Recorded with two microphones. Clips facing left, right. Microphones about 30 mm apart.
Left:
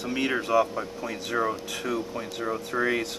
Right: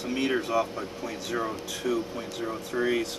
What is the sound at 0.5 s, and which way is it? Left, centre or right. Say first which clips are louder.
Speech: left 4 dB; centre.